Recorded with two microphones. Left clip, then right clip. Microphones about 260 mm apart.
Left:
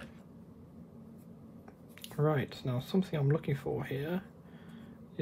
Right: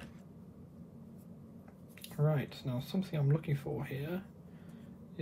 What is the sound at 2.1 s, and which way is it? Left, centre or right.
Speech, left.